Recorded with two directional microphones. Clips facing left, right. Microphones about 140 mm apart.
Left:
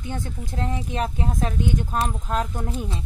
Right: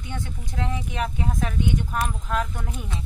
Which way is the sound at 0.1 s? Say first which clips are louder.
Left 2 dB; 40° left (ahead or behind).